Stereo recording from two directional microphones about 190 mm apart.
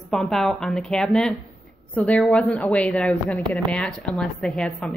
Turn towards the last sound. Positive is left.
turn(degrees=5)  # may be behind; listen again after turning